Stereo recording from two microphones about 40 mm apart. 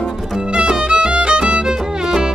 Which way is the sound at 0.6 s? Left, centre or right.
Right.